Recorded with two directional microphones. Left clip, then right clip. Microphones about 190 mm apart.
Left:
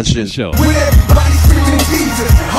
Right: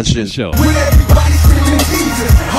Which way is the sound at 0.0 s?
Centre (ahead or behind).